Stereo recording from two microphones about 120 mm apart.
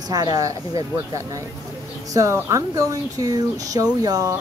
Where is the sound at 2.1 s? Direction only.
25° right (ahead or behind).